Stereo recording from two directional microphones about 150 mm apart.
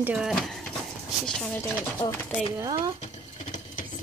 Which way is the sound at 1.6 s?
25° left (ahead or behind).